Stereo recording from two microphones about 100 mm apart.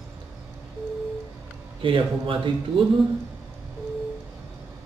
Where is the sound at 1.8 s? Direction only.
60° right (ahead or behind).